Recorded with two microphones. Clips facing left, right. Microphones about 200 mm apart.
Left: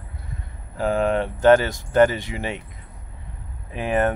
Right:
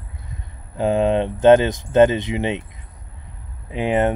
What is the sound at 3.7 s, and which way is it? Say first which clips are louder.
Speech: right 3 dB; 20° right (ahead or behind).